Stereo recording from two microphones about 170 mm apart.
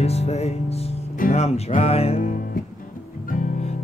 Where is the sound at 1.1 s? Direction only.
55° left (ahead or behind).